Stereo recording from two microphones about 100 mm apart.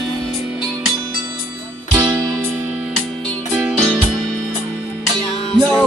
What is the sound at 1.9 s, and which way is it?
Music, 30° right (ahead or behind).